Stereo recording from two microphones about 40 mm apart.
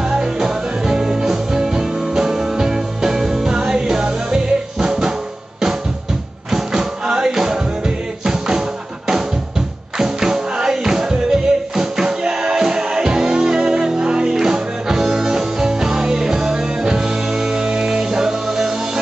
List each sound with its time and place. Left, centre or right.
0.1 s music: centre
6.5 s music: centre